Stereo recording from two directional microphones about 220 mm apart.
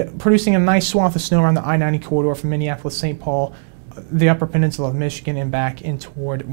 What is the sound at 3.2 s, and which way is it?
Speech, 20° left (ahead or behind).